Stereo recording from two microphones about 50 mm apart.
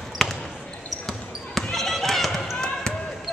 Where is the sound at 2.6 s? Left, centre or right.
Centre.